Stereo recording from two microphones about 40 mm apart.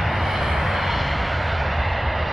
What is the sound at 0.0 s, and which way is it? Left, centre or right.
Vehicle, centre.